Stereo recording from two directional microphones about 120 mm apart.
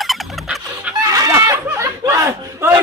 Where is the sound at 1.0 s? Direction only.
30° right (ahead or behind).